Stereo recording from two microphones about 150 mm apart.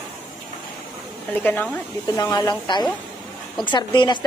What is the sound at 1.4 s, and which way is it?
Speech, 10° left (ahead or behind).